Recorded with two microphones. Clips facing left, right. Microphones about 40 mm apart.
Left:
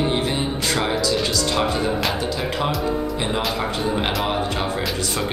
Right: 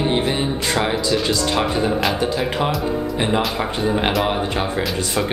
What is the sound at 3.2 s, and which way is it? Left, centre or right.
Music, right.